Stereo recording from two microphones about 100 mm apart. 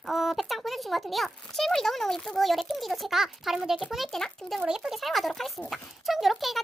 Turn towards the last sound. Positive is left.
turn(degrees=0)  # may be behind; listen again after turning